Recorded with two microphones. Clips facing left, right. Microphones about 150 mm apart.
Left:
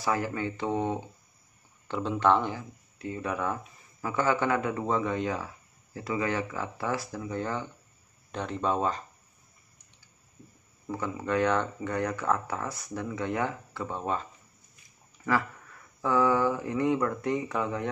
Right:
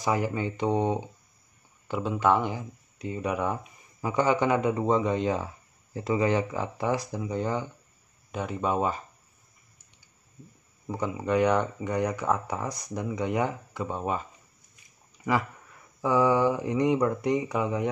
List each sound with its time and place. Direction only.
0.0 s a man's voice: 15° right (ahead or behind)
10.9 s speech: 15° right (ahead or behind)
15.3 s speech: 15° right (ahead or behind)